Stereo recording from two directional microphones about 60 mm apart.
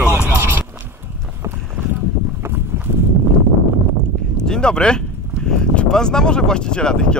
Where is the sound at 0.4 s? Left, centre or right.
Right.